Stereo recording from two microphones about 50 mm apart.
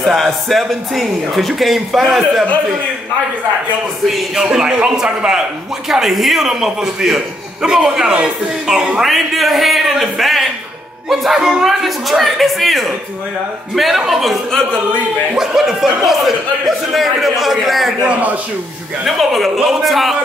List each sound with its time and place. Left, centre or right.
0.0 s a man's voice: centre
4.4 s speech: centre
9.0 s a man's voice: centre
19.0 s a man's voice: centre